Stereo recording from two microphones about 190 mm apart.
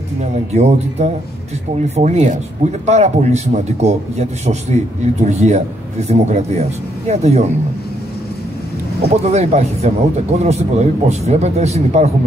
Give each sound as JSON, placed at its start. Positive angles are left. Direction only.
{"t": 0.2, "sound": "speech", "side_deg": -35}
{"t": 9.1, "sound": "speech", "side_deg": -35}